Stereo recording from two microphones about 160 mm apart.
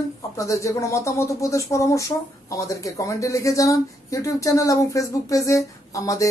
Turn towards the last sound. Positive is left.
turn(degrees=20)  # may be behind; listen again after turning